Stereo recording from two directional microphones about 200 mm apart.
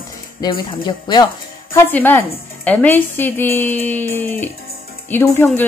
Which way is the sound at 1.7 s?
10° left (ahead or behind).